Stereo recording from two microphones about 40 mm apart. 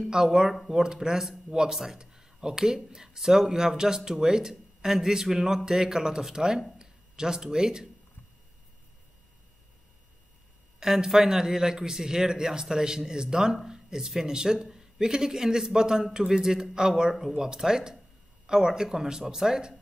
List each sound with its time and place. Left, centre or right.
0.1 s a man's voice: centre
10.8 s a man's voice: centre